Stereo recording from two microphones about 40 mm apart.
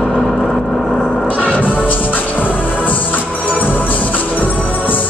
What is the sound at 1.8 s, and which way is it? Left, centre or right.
Music, left.